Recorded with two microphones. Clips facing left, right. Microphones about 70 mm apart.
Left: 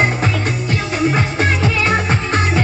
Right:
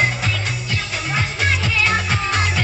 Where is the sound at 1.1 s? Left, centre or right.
Left.